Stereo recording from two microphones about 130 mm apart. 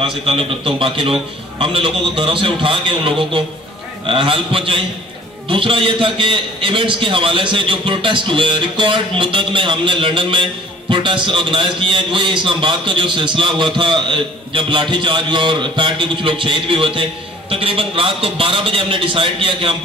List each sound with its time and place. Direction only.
0.0 s a man's voice: 45° right (ahead or behind)